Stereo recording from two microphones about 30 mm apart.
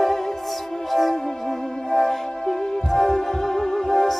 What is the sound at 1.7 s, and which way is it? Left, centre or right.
Music, left.